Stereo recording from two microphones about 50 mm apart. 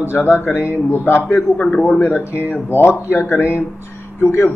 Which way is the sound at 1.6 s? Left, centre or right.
Left.